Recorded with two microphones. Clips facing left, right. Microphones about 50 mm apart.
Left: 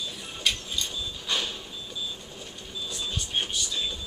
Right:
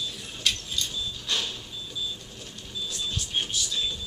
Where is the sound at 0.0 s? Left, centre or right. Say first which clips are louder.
Even; centre.